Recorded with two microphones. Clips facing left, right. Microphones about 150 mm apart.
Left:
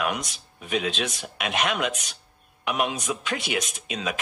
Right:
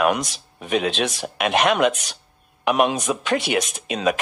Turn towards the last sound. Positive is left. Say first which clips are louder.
# right 8 dB
turn(degrees=-60)  # may be behind; listen again after turning